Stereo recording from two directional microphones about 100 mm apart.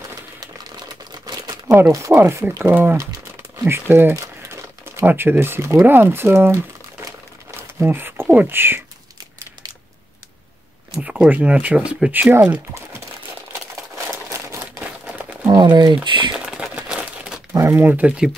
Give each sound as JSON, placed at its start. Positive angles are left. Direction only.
{"t": 1.2, "sound": "crumpling", "side_deg": -40}
{"t": 1.9, "sound": "speech", "side_deg": -30}
{"t": 11.0, "sound": "speech", "side_deg": -10}
{"t": 15.0, "sound": "crumpling", "side_deg": -10}
{"t": 15.5, "sound": "speech", "side_deg": -50}
{"t": 16.3, "sound": "crumpling", "side_deg": -10}
{"t": 17.6, "sound": "speech", "side_deg": -25}